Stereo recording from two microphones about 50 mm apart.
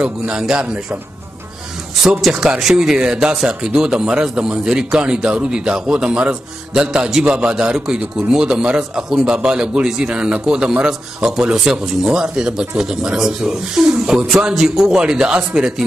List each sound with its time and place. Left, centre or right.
0.0 s speech: centre
2.3 s speech: centre